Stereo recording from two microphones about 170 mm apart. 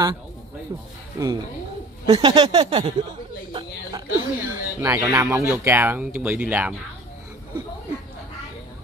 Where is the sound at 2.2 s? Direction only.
25° right (ahead or behind).